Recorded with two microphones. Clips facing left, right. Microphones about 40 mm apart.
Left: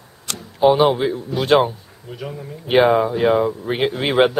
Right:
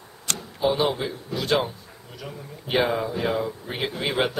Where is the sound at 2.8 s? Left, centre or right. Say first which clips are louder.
Left 10 dB; left.